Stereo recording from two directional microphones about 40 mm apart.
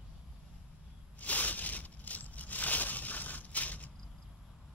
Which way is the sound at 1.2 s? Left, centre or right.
Left.